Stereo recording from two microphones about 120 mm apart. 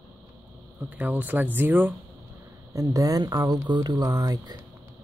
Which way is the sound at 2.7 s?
30° right (ahead or behind).